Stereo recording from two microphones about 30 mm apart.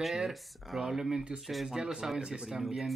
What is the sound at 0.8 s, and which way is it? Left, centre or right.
Speech, centre.